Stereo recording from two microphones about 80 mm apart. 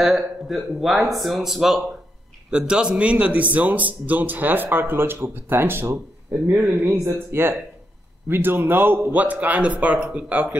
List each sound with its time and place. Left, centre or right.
0.0 s a man's voice: centre